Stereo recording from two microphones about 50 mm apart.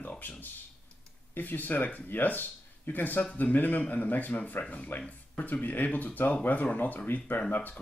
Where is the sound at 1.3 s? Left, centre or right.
Left.